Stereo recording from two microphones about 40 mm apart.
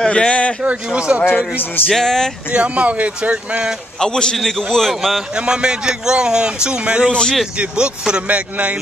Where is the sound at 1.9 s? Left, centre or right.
Centre.